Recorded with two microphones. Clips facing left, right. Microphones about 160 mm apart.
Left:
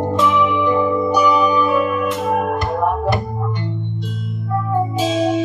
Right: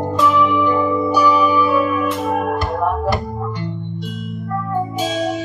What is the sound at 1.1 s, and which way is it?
Music, 15° left (ahead or behind).